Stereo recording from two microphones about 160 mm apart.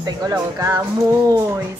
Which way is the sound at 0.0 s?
25° right (ahead or behind).